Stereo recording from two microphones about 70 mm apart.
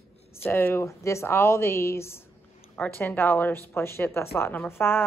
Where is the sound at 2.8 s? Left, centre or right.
Left.